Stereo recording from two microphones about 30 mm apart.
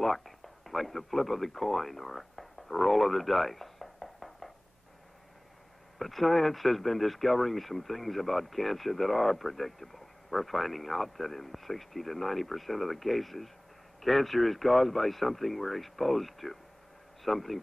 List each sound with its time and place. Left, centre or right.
0.7 s speech: centre
5.9 s speech: centre